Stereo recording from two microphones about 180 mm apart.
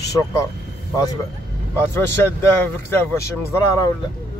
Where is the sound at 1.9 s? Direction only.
10° left (ahead or behind).